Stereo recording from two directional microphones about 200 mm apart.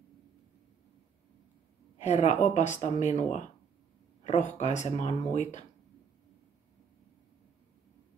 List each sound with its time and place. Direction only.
2.0 s speech: 35° left (ahead or behind)